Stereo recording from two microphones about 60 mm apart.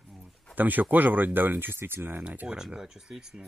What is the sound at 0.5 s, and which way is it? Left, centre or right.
Speech, right.